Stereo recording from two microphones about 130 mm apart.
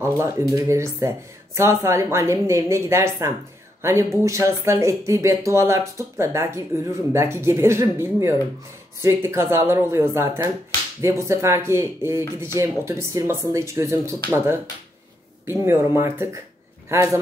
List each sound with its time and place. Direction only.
0.0 s speech: 20° right (ahead or behind)